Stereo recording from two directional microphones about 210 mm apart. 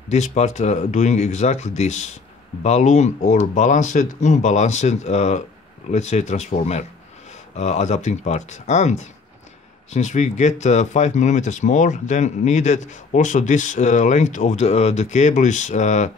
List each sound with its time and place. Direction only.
0.1 s speech: 35° left (ahead or behind)